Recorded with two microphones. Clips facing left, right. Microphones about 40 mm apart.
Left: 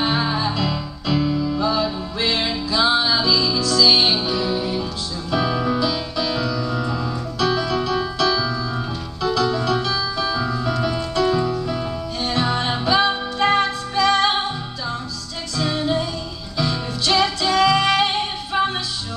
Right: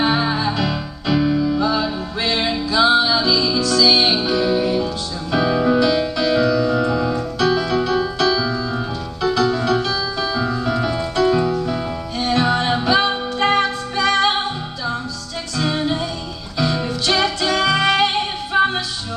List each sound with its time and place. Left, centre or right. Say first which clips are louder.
0.0 s music: right 3 dB; centre
1.6 s music: right 1 dB; centre
5.7 s music: right 6 dB; right
9.8 s music: right 1 dB; centre
10.7 s piano: right 2 dB; centre
11.4 s music: right 3 dB; right
12.2 s music: right 4 dB; centre